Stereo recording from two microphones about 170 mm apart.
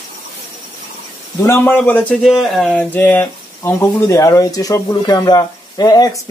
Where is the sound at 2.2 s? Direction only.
Centre (ahead or behind).